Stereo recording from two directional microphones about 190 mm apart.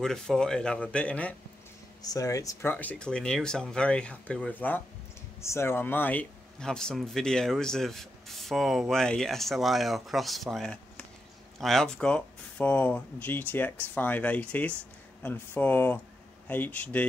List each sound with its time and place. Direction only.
0.0 s speech: 5° left (ahead or behind)
2.0 s speech: 15° left (ahead or behind)